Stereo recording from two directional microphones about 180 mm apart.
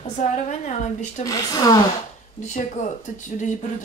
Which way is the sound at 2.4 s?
45° left (ahead or behind).